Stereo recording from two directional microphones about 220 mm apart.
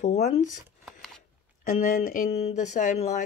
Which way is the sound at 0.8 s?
Centre (ahead or behind).